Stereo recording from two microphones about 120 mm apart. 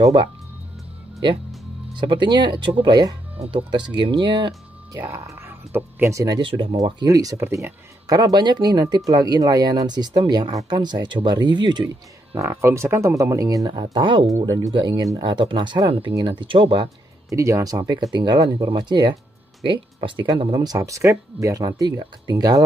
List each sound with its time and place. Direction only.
0.0 s speech: 40° right (ahead or behind)
2.0 s speech: 40° right (ahead or behind)
3.3 s speech: 45° right (ahead or behind)
4.9 s speech: 20° right (ahead or behind)
6.2 s speech: 40° right (ahead or behind)
6.8 s speech: 30° right (ahead or behind)
8.1 s speech: 30° right (ahead or behind)
12.4 s speech: 20° right (ahead or behind); by 14.2 s 40° right (ahead or behind)
14.3 s speech: 30° right (ahead or behind)
17.3 s speech: 25° right (ahead or behind)